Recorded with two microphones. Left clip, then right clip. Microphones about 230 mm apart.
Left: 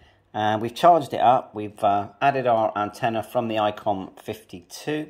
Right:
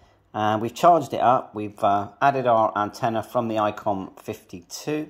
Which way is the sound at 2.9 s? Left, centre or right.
Centre.